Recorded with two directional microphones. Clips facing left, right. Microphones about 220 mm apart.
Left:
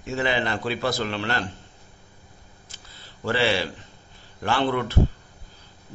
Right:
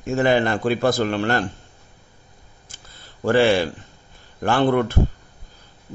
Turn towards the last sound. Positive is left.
turn(degrees=-50)  # may be behind; listen again after turning